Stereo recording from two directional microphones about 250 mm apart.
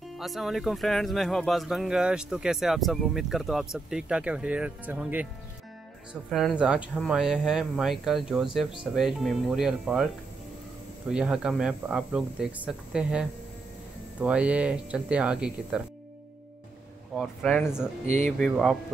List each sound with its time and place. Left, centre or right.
0.2 s speech: centre
6.3 s speech: centre
11.1 s speech: centre
17.1 s speech: centre
18.0 s speech: right
18.4 s speech: centre